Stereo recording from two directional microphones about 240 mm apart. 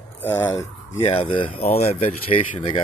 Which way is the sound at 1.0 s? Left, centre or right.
Left.